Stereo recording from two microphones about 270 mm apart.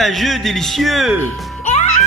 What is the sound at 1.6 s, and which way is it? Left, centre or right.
Music, left.